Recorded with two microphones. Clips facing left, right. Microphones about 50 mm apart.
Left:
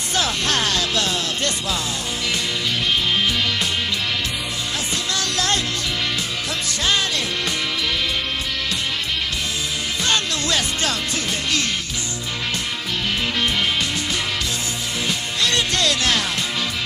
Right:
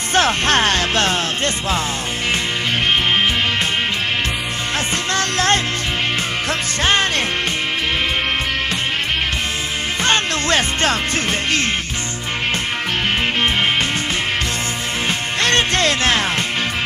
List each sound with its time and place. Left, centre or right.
0.1 s speech: right
5.1 s music: right
6.8 s music: right
10.0 s music: right
15.4 s music: right